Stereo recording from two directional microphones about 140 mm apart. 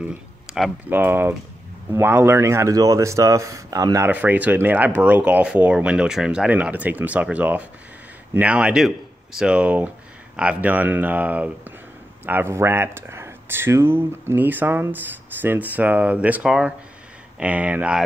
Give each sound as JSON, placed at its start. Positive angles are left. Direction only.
{"t": 0.0, "sound": "speech", "side_deg": -10}
{"t": 4.1, "sound": "speech", "side_deg": -10}